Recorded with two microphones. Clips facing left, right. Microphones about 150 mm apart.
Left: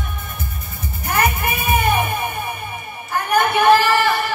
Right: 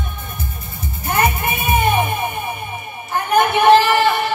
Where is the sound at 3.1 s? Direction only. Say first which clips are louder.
Right 2 dB; 20° right (ahead or behind).